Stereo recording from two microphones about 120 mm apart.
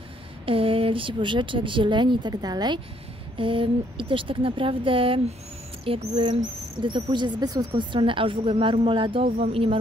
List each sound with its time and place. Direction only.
0.5 s speech: 50° right (ahead or behind)
3.3 s speech: 45° right (ahead or behind)